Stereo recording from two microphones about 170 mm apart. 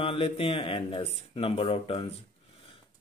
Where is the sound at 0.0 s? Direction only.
35° left (ahead or behind).